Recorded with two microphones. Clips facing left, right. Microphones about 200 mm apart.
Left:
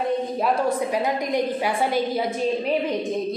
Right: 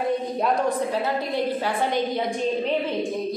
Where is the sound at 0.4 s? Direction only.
10° left (ahead or behind).